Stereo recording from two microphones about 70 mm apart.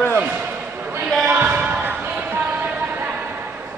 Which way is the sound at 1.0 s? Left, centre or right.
Centre.